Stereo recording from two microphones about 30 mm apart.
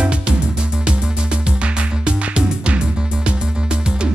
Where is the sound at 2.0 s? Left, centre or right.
Right.